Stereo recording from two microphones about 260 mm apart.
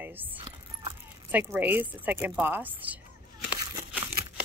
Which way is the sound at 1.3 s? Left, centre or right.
Centre.